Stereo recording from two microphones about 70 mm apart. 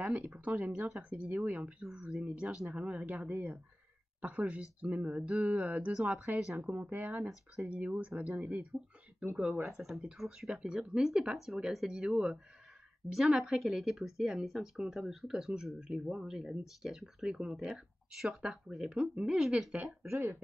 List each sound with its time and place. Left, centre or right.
0.0 s speech: centre
5.9 s speech: centre
6.2 s speech: right
19.9 s speech: right